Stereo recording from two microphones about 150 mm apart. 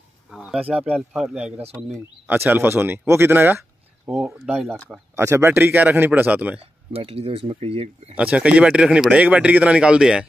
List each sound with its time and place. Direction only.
0.3 s speech: 5° right (ahead or behind)
5.1 s speech: 15° right (ahead or behind)
6.9 s speech: 40° right (ahead or behind)
8.2 s speech: 10° right (ahead or behind)